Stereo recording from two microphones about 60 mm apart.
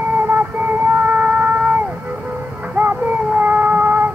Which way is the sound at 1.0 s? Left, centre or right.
Right.